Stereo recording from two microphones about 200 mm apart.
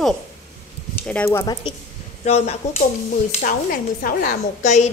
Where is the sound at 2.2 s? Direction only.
35° left (ahead or behind).